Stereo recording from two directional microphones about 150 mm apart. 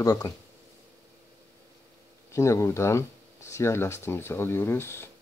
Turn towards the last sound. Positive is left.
turn(degrees=15)  # may be behind; listen again after turning